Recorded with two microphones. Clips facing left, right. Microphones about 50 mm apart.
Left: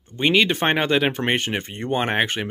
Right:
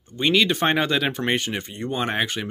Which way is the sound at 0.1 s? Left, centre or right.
Left.